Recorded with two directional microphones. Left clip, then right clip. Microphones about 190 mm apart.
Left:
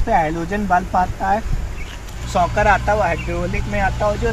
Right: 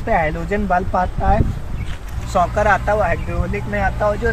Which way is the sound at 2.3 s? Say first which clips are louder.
Even; centre (ahead or behind).